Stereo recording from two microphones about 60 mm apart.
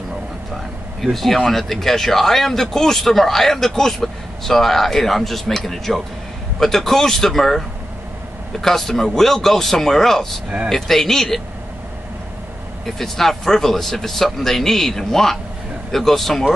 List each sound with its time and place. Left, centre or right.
1.0 s speech: centre
12.8 s speech: centre